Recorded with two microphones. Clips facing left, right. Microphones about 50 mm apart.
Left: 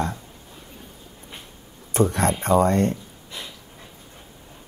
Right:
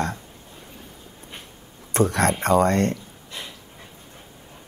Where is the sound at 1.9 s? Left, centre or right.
Right.